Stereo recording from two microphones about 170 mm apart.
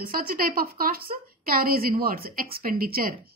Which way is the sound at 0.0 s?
60° right (ahead or behind).